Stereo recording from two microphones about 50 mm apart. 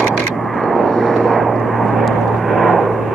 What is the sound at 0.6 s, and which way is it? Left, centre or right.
Vehicle, centre.